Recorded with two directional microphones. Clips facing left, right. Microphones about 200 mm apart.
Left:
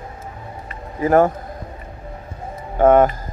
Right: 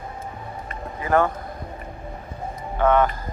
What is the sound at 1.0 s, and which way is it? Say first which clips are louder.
Speech: left 6 dB; 45° left (ahead or behind).